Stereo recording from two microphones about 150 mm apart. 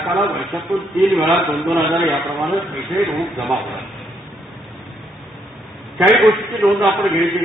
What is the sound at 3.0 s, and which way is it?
Speech, 20° right (ahead or behind).